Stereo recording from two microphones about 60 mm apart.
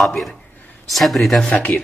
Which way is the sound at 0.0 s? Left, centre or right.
Centre.